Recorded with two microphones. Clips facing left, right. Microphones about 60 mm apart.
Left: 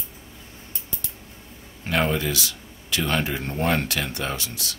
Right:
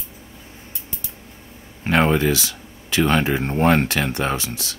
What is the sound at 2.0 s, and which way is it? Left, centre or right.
Speech, right.